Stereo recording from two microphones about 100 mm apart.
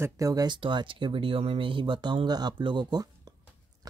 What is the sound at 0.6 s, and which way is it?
Speech, 55° right (ahead or behind).